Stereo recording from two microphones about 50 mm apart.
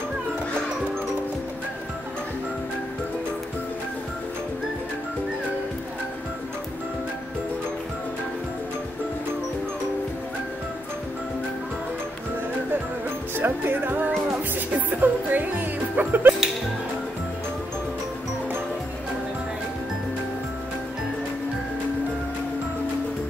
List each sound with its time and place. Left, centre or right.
13.4 s music: right